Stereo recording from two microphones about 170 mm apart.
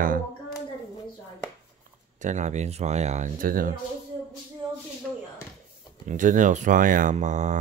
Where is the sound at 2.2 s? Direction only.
45° right (ahead or behind).